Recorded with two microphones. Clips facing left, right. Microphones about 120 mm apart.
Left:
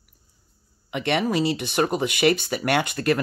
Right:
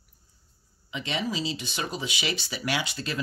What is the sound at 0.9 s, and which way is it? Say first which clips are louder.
Speech: left 8 dB; 60° left (ahead or behind).